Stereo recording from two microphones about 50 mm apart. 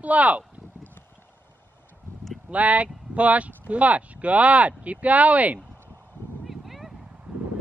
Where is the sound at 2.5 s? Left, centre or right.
Right.